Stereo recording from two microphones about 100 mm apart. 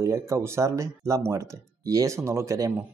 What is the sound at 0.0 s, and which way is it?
Speech, 30° right (ahead or behind).